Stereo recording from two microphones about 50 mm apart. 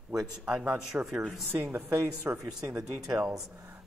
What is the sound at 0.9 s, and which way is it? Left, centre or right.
A woman's voice, right.